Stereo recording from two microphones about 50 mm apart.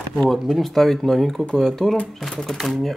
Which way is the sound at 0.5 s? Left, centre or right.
Centre.